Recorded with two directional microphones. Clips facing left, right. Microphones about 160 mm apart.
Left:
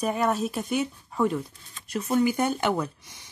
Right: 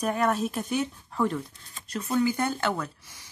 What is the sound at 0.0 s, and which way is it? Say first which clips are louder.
Speech: left 1 dB; 5° left (ahead or behind).